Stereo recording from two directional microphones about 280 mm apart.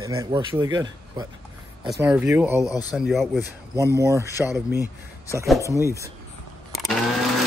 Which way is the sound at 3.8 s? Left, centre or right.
Centre.